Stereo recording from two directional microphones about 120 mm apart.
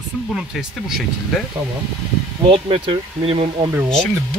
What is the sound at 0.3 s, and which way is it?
Speech, 5° right (ahead or behind).